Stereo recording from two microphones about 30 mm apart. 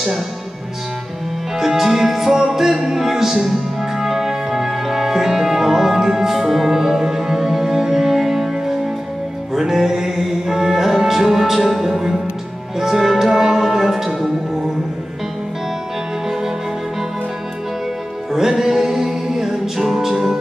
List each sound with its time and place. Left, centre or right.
1.6 s music: centre
13.3 s music: centre
16.3 s music: centre
18.3 s music: centre